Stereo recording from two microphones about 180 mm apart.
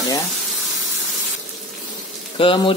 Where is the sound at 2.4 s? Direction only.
30° left (ahead or behind).